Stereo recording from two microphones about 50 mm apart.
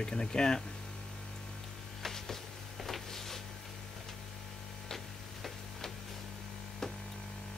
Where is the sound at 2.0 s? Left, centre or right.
Centre.